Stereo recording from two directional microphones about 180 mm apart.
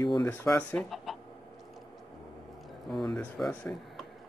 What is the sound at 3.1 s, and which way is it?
Speech, 5° left (ahead or behind).